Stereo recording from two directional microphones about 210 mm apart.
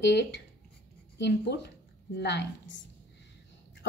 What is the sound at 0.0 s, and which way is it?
Speech, 55° left (ahead or behind).